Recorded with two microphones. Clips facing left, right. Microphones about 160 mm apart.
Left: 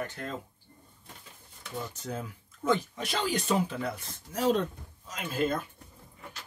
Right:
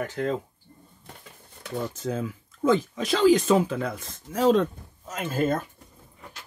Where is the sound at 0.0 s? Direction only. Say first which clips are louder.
Right 9 dB; 90° right.